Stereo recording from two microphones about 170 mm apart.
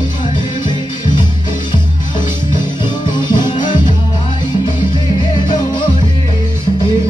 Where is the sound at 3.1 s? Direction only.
25° left (ahead or behind).